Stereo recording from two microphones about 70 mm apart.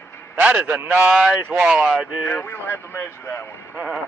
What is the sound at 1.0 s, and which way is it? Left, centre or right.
Speech, centre.